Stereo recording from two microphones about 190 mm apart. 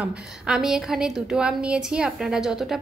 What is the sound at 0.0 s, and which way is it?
A woman's voice, 5° right (ahead or behind).